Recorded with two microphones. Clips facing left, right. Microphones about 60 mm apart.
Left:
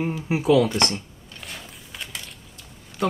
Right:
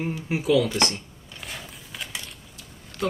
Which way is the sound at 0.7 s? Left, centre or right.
Centre.